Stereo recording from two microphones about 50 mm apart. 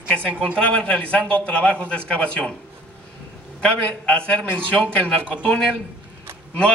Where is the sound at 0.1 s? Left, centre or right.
Left.